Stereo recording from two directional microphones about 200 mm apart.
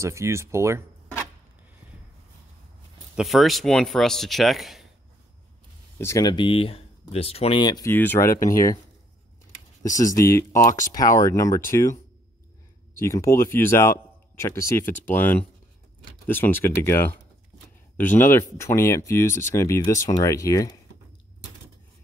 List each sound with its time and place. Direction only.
0.0 s speech: 15° right (ahead or behind)
3.2 s speech: centre (ahead or behind)
5.9 s speech: 15° left (ahead or behind)
8.3 s speech: 40° left (ahead or behind)
9.8 s speech: 40° left (ahead or behind)
10.1 s speech: 15° left (ahead or behind)
13.0 s speech: 15° left (ahead or behind)